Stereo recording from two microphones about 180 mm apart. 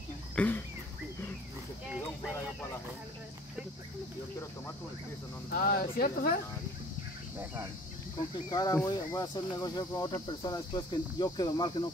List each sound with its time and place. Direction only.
0.4 s a sound: 5° left (ahead or behind)
5.5 s speech: 55° left (ahead or behind)
8.5 s speech: 20° left (ahead or behind)